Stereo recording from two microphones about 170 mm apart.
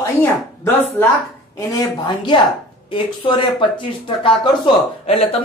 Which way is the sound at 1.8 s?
25° left (ahead or behind).